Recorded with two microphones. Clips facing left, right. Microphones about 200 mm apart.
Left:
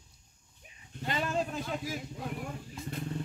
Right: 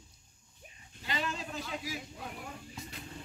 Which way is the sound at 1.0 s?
50° left (ahead or behind).